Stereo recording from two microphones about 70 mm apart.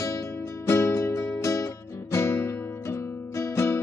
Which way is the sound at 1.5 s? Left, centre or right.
Left.